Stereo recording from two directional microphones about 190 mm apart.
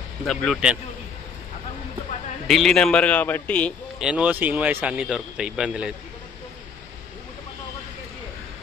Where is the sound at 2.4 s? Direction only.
Centre (ahead or behind).